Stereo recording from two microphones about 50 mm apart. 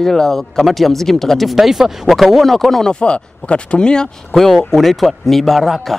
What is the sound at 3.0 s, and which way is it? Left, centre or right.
Speech, left.